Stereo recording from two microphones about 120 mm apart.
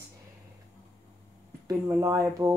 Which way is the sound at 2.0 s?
25° right (ahead or behind).